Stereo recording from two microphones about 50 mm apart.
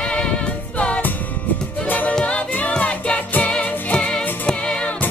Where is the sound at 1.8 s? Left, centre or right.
Left; by 4.9 s centre.